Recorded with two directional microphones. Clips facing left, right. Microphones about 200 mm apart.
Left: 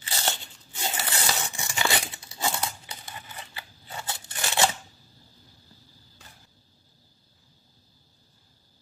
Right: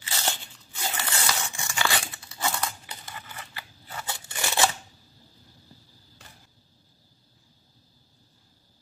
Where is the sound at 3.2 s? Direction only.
20° left (ahead or behind).